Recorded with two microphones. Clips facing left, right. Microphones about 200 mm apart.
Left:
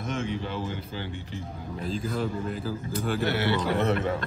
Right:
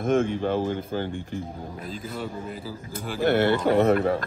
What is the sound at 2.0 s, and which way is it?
Speech, centre (ahead or behind).